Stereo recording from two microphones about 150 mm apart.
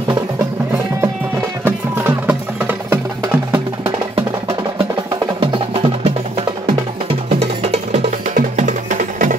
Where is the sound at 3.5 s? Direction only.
35° right (ahead or behind).